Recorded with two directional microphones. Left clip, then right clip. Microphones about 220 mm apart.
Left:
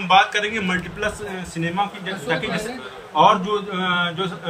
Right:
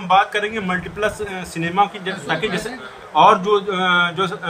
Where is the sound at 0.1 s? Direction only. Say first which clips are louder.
Even; 20° right (ahead or behind).